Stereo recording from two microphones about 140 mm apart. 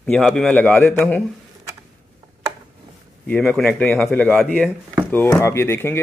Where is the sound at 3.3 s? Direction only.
10° left (ahead or behind).